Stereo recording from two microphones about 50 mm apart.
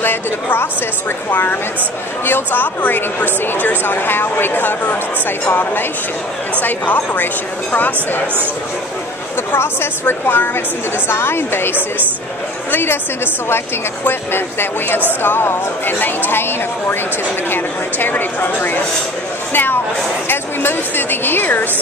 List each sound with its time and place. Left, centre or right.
0.0 s a woman's voice: left
9.5 s a woman's voice: left
12.7 s a woman's voice: left